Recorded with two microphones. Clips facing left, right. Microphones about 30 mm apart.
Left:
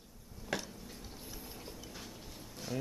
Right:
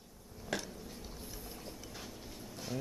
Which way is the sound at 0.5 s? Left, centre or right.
Centre.